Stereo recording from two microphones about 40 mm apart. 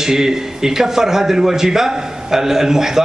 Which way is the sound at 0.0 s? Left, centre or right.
Centre.